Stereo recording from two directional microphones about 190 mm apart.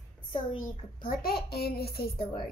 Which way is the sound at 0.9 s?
50° left (ahead or behind).